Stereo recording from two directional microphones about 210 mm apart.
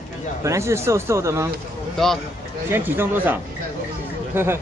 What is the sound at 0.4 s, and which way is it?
Speech, 15° right (ahead or behind).